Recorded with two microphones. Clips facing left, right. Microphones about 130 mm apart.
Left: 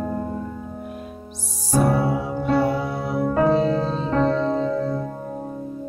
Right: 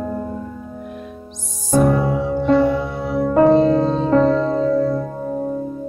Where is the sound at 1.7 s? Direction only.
10° left (ahead or behind).